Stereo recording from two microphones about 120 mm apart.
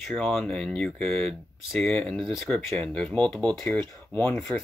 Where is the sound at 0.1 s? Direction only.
5° left (ahead or behind).